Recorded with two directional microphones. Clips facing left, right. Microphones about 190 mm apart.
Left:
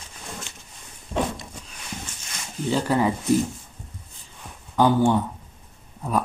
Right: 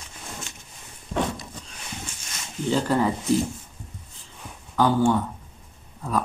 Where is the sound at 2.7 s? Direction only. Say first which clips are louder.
Even; 5° left (ahead or behind).